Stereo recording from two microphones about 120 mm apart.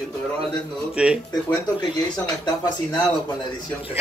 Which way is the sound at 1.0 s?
10° right (ahead or behind).